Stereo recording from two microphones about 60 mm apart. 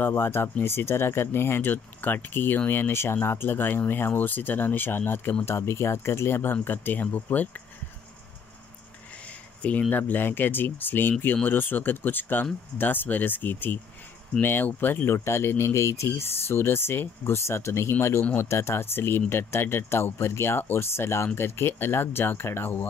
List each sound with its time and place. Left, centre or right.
0.1 s speech: left
9.6 s speech: left
15.1 s speech: left